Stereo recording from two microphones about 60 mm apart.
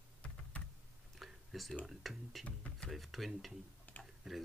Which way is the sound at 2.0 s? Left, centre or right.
Centre.